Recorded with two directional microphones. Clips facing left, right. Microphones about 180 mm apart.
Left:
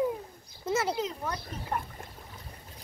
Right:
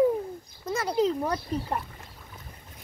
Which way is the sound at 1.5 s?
35° right (ahead or behind).